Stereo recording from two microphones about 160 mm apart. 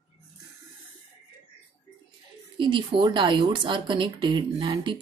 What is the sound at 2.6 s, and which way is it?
Speech, 30° right (ahead or behind).